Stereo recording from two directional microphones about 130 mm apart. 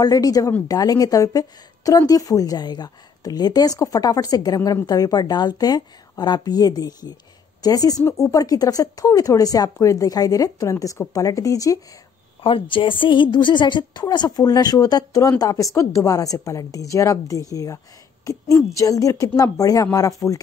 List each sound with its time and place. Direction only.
0.0 s a woman's voice: 30° left (ahead or behind)
12.4 s a woman's voice: 40° left (ahead or behind); by 20.3 s 25° left (ahead or behind)